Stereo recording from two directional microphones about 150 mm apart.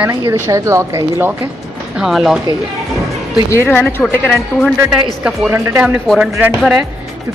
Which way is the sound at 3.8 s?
10° left (ahead or behind).